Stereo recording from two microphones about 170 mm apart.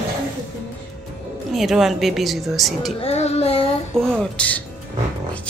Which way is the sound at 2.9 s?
40° left (ahead or behind).